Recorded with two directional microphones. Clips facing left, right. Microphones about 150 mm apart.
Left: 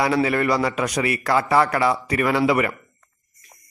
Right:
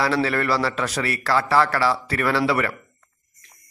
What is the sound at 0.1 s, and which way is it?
Speech, 10° left (ahead or behind).